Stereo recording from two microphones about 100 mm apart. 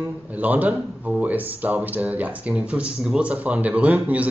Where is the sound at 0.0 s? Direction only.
15° right (ahead or behind).